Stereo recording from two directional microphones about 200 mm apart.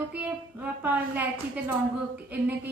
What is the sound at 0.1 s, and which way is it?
A woman's voice, 5° right (ahead or behind).